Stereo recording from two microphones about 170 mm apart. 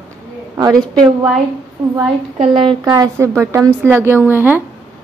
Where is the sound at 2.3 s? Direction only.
30° right (ahead or behind).